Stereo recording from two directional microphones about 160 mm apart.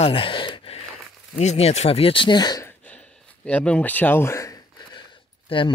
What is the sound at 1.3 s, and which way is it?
Speech, 45° left (ahead or behind).